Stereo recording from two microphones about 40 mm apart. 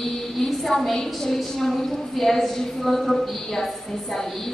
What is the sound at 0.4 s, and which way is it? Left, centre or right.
A woman's voice, centre.